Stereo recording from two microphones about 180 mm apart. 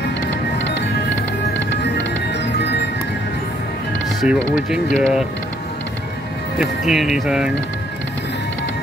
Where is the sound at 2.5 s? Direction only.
70° left (ahead or behind).